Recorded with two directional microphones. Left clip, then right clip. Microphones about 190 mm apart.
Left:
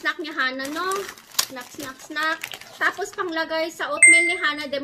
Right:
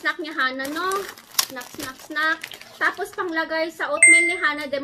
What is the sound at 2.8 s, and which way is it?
Speech, 10° left (ahead or behind).